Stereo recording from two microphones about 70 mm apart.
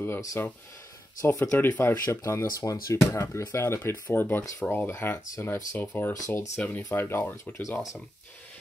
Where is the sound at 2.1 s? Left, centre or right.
Left.